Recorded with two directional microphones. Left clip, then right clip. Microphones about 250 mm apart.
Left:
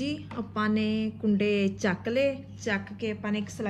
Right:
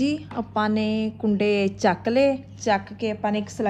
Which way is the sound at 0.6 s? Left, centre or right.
Centre.